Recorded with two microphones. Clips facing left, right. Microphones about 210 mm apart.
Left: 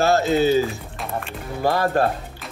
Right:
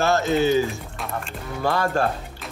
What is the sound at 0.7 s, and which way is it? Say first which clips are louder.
Music: left 1 dB; centre (ahead or behind).